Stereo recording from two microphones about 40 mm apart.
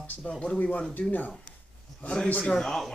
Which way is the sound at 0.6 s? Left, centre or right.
Left.